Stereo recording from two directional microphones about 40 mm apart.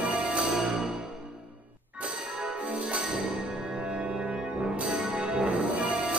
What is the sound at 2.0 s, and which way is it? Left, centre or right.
Music, right.